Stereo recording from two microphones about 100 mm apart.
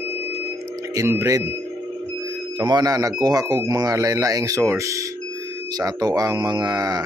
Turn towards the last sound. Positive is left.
turn(degrees=-40)  # may be behind; listen again after turning